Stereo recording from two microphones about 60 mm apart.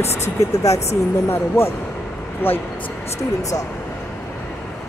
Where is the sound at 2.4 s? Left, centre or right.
Left.